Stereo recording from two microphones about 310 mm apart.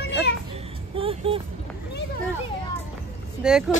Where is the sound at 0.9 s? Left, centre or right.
Centre.